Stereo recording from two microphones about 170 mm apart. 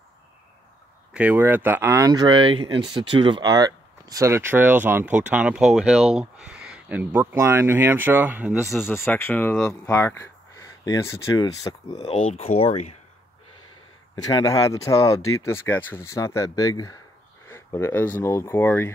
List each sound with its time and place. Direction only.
1.1 s speech: 10° right (ahead or behind)
8.6 s speech: 15° left (ahead or behind)
12.1 s speech: 35° left (ahead or behind)
14.1 s speech: 20° left (ahead or behind)